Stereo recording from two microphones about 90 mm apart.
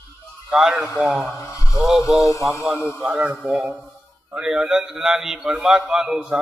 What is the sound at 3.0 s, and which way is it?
A man's voice, 10° right (ahead or behind).